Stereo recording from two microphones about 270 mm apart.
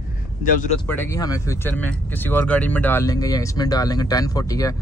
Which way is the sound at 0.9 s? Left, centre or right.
Centre.